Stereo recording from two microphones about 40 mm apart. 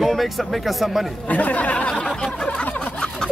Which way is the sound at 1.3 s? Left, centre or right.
Left.